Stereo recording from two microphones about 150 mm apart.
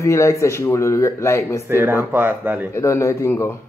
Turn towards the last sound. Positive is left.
turn(degrees=15)  # may be behind; listen again after turning